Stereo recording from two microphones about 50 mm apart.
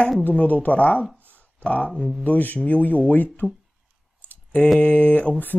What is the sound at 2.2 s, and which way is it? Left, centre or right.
Speech, left.